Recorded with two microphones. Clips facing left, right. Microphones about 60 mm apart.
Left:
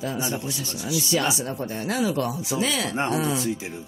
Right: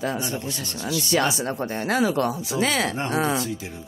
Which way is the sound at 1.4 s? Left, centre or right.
Right.